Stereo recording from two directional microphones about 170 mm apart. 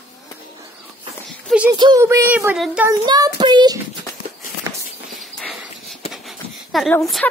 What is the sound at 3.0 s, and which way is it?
Child singing, 25° right (ahead or behind).